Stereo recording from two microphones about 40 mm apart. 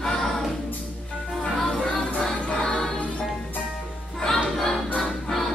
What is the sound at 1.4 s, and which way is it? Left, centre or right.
Music, centre.